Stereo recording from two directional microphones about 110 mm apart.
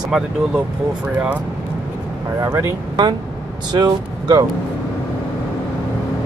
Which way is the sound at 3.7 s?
40° right (ahead or behind).